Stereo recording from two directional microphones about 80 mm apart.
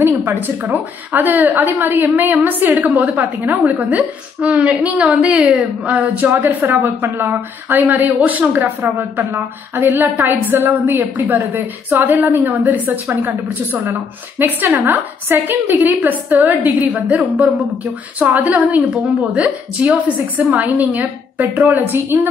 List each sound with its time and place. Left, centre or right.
0.0 s a woman's voice: right